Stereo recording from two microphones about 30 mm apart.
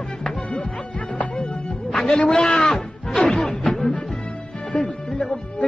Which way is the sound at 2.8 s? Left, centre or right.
Centre.